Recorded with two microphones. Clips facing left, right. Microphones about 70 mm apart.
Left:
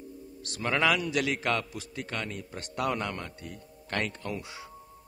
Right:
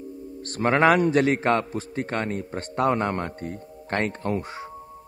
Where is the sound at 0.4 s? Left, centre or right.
Right.